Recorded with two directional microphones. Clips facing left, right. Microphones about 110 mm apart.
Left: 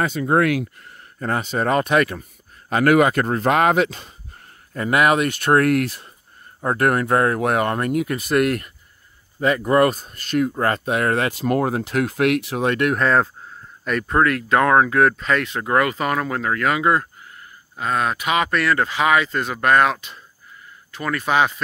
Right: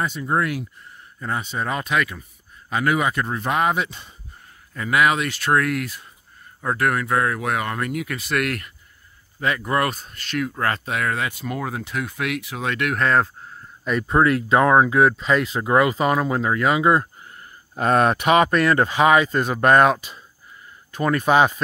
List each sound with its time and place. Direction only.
0.2 s speech: 90° left
1.2 s speech: 75° left (ahead or behind); by 3.4 s 55° left (ahead or behind)
3.4 s speech: 85° left
4.7 s speech: 45° left (ahead or behind); by 6.0 s 65° left (ahead or behind)
6.8 s speech: 45° left (ahead or behind)
11.2 s speech: 70° left (ahead or behind)
11.8 s speech: 70° left (ahead or behind)
12.5 s speech: 45° left (ahead or behind)
12.9 s speech: centre (ahead or behind)
14.2 s speech: 25° right (ahead or behind)
14.6 s speech: 15° right (ahead or behind)
15.2 s speech: 20° right (ahead or behind)
17.7 s speech: 45° right (ahead or behind)
18.2 s speech: 30° right (ahead or behind)